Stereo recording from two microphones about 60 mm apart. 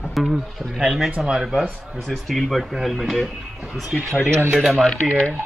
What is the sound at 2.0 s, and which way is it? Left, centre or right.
Speech, centre.